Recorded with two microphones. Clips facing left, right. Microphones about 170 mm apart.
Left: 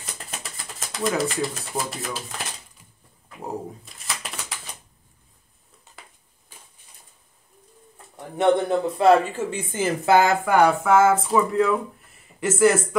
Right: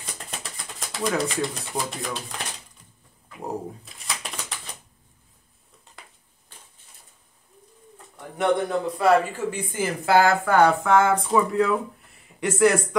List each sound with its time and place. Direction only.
0.0 s typewriter: centre (ahead or behind)
3.4 s pigeon: centre (ahead or behind)
5.9 s a sound: 5° left (ahead or behind)
8.4 s speech: 25° left (ahead or behind); by 12.8 s 5° left (ahead or behind)